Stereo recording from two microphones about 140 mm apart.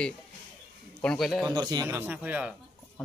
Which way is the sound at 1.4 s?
30° right (ahead or behind).